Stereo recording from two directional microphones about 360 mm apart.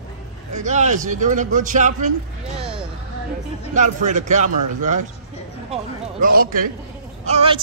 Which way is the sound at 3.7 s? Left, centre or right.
Centre.